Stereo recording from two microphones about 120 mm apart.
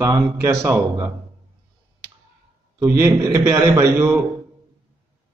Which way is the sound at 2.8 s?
25° right (ahead or behind).